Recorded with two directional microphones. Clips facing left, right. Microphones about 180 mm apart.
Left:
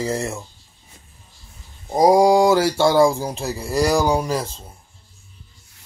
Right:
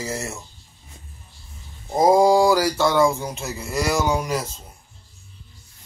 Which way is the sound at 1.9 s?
15° left (ahead or behind).